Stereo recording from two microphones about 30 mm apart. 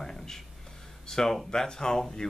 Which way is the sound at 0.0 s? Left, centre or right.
Centre.